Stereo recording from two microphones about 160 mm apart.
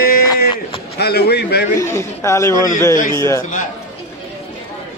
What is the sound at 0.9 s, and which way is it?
Speech, 85° left.